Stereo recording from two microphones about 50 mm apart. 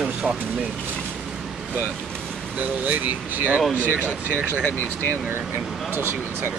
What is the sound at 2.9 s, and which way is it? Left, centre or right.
Speech, right.